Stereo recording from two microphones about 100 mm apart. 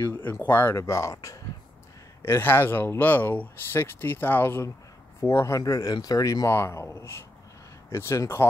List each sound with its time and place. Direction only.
0.1 s speech: 20° left (ahead or behind)
2.2 s speech: 25° left (ahead or behind)
5.6 s speech: 40° left (ahead or behind)